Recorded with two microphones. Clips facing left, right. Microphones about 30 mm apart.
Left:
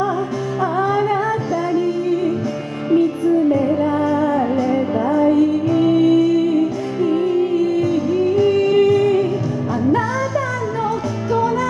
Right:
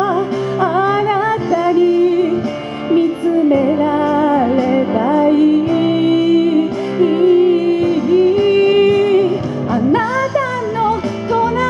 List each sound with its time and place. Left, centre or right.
0.0 s music: right